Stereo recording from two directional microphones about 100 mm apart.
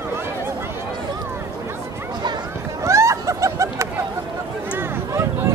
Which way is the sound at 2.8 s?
30° right (ahead or behind).